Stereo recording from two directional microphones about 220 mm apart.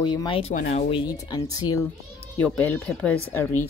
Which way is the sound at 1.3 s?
15° left (ahead or behind).